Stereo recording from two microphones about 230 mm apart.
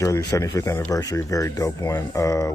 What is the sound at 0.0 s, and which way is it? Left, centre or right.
Speech, centre.